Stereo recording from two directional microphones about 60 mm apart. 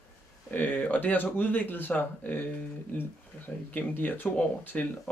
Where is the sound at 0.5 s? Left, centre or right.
Left.